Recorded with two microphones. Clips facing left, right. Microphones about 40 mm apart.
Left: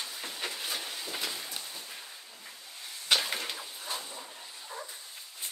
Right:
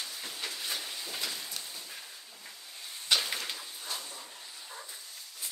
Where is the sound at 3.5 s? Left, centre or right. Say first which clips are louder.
Left 2 dB; left.